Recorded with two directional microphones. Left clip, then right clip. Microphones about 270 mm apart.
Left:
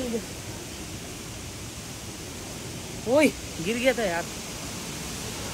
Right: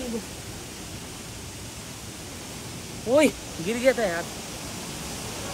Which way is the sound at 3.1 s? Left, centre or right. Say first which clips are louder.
Right 1 dB; centre.